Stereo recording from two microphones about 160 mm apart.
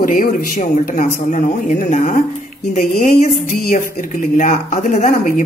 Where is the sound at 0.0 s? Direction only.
55° left (ahead or behind).